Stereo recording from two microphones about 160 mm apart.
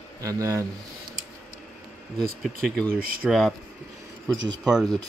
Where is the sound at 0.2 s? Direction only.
20° right (ahead or behind).